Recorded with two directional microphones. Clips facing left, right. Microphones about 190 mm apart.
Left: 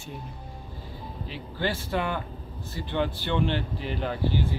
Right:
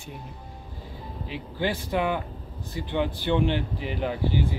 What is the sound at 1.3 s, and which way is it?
Speech, 15° right (ahead or behind).